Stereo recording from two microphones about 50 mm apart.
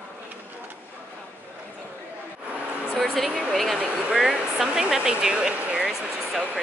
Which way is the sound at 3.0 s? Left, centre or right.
Centre.